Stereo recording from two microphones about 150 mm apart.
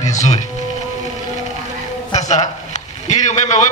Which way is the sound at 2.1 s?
50° left (ahead or behind).